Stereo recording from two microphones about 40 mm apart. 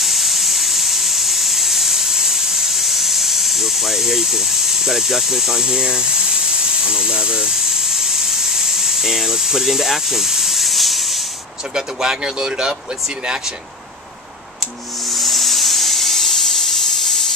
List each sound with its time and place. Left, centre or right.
0.0 s a sound: centre
11.7 s speech: centre
15.0 s hiss: centre